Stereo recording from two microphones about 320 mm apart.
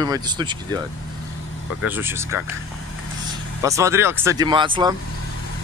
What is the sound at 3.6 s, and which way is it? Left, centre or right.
Speech, centre.